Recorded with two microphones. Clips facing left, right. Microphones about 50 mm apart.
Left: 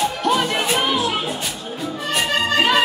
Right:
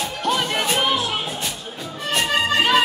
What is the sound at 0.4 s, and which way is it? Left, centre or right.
Music, centre.